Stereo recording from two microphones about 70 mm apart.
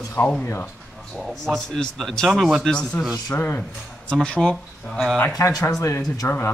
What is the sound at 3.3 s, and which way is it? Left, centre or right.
Speech, left.